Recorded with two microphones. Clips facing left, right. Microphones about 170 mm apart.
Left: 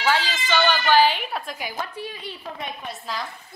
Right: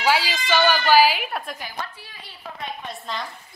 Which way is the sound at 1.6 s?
20° left (ahead or behind).